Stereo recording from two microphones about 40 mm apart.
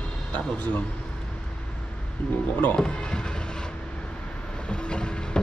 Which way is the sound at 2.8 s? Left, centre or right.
Left.